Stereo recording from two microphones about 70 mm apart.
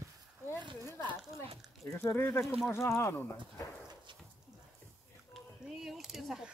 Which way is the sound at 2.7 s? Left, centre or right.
Left.